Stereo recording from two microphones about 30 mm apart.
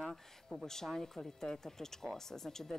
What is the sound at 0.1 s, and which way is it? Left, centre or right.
Speech, centre.